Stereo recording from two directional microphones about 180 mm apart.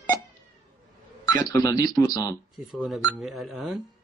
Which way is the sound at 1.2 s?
20° left (ahead or behind).